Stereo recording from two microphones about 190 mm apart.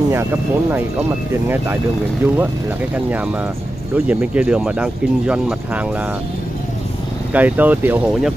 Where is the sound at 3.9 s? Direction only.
5° right (ahead or behind).